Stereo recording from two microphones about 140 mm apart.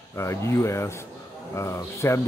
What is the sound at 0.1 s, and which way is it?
Speech, 20° left (ahead or behind).